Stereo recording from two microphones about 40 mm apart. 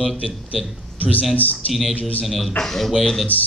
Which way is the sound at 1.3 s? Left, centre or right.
Left.